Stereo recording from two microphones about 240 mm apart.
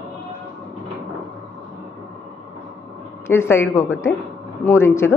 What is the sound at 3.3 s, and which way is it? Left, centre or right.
A woman's voice, centre.